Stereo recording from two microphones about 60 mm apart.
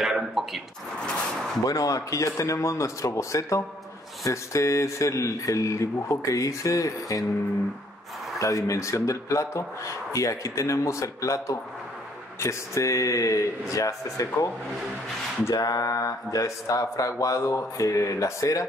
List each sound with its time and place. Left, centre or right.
0.0 s a sound: centre
1.7 s speech: left
8.4 s speech: left
15.5 s speech: left